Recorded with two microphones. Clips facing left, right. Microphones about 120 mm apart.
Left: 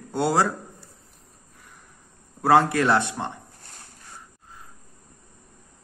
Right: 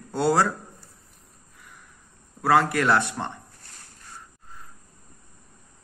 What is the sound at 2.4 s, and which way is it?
Speech, 25° left (ahead or behind).